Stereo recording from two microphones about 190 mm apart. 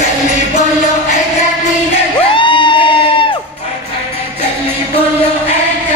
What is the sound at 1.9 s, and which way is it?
Crowd, 25° left (ahead or behind).